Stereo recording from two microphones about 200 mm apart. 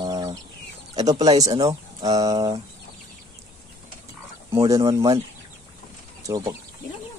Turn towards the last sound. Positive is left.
turn(degrees=-20)  # may be behind; listen again after turning